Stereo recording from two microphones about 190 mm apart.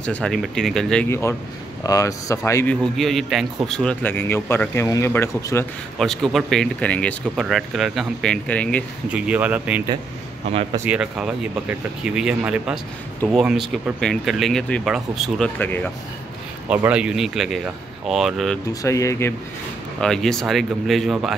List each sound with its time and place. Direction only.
0.0 s speech: 5° left (ahead or behind)
5.9 s speech: centre (ahead or behind)
9.1 s speech: 5° right (ahead or behind)
10.9 s speech: 5° right (ahead or behind)
16.6 s speech: 5° right (ahead or behind)
18.7 s speech: 15° left (ahead or behind)
20.0 s speech: 5° left (ahead or behind)